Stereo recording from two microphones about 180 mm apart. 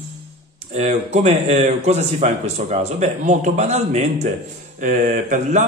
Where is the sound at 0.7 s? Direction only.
35° right (ahead or behind).